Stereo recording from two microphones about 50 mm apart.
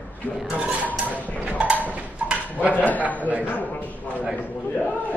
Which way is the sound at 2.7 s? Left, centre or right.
Left.